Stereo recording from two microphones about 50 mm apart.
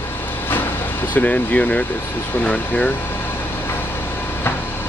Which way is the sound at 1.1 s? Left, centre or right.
Left.